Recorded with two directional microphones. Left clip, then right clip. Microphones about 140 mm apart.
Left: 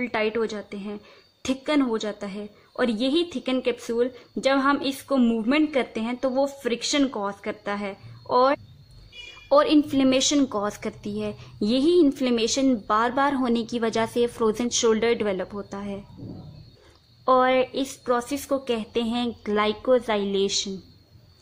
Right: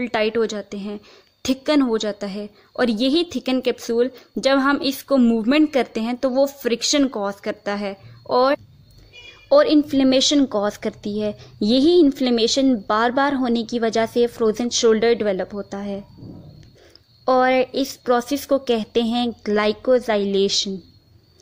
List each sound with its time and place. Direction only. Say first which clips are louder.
0.0 s a woman's voice: right 5 dB; 35° right (ahead or behind)
9.5 s a woman's voice: right 4 dB; 20° right (ahead or behind)
17.2 s a woman's voice: right 3 dB; 25° right (ahead or behind)